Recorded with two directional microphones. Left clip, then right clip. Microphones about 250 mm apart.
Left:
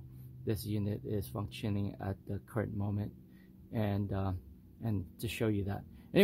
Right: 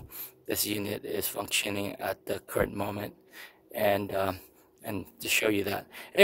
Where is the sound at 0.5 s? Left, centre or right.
Right.